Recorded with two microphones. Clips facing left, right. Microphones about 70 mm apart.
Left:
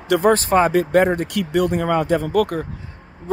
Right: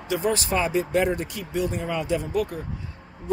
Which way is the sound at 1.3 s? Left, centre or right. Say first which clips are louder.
Left 8 dB; left.